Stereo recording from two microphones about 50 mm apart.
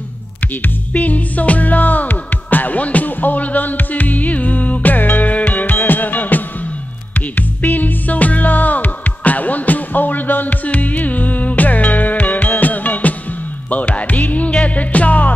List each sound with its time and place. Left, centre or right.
0.6 s music: left